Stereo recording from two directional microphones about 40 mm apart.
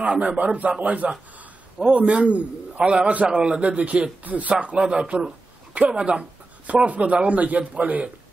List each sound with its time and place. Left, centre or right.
0.0 s speech: right
1.8 s a man's voice: right
3.7 s speech: right
4.7 s speech: right